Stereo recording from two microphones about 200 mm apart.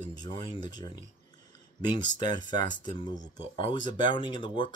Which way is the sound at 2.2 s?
20° left (ahead or behind).